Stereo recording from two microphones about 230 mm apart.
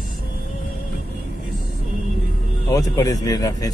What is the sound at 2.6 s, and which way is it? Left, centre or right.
Speech, centre.